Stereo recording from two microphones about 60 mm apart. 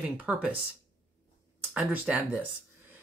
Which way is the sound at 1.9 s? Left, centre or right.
Right.